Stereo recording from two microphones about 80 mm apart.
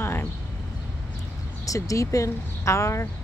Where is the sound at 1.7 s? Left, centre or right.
Left.